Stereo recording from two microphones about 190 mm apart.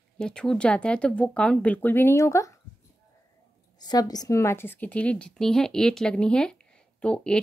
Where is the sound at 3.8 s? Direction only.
20° left (ahead or behind).